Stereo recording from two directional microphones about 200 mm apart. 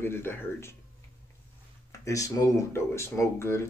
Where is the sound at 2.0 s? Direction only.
15° left (ahead or behind).